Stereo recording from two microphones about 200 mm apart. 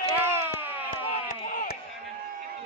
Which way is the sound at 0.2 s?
10° right (ahead or behind).